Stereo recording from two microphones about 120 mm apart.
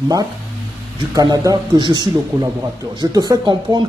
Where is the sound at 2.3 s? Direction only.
30° right (ahead or behind).